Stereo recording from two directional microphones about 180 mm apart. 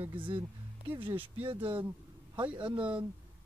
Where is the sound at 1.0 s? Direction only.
30° right (ahead or behind).